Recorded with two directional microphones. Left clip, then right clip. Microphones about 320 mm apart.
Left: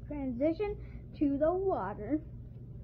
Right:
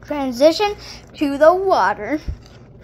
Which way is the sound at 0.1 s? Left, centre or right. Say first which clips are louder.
Right 18 dB; centre.